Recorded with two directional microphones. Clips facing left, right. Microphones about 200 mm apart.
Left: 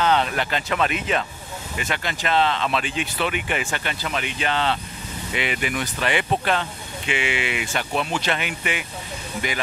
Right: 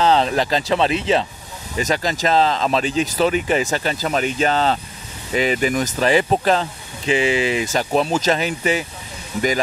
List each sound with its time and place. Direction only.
0.0 s speech: 35° right (ahead or behind)